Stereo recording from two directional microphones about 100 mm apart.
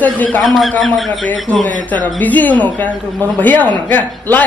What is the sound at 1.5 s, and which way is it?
A man's voice, 15° left (ahead or behind).